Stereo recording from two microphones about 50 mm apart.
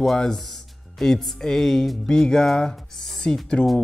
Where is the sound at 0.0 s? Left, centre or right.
Centre.